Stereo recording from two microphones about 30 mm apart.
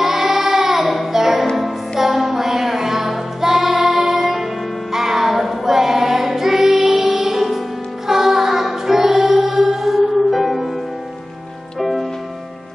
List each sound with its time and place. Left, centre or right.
0.0 s child singing: centre
1.1 s music: centre
4.9 s child singing: centre
8.1 s music: centre
11.8 s music: centre